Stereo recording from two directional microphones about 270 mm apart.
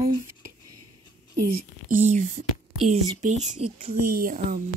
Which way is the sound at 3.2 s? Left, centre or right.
Right.